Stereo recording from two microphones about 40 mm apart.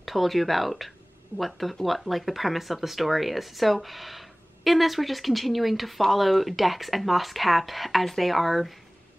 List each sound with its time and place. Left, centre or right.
0.0 s speech: centre